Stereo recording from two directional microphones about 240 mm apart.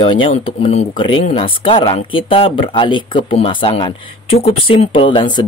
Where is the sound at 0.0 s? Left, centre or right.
Left.